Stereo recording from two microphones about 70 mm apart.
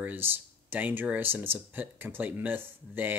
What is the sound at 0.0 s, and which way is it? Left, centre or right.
Speech, right.